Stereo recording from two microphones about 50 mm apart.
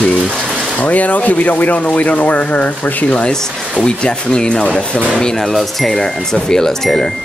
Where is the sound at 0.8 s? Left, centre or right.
Left.